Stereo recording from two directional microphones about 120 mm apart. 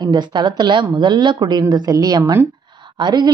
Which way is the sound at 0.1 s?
40° right (ahead or behind).